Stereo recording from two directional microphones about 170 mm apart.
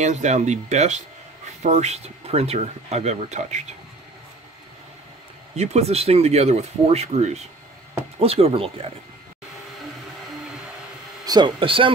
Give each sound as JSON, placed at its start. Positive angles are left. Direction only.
{"t": 0.0, "sound": "speech", "side_deg": -45}
{"t": 5.6, "sound": "speech", "side_deg": -40}
{"t": 11.2, "sound": "speech", "side_deg": -25}